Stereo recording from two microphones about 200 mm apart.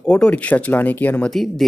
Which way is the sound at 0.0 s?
5° left (ahead or behind).